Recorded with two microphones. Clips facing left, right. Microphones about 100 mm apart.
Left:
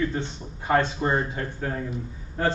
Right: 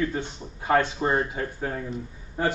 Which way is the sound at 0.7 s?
10° right (ahead or behind).